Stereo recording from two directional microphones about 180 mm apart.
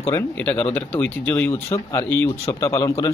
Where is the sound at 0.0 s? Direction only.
10° left (ahead or behind).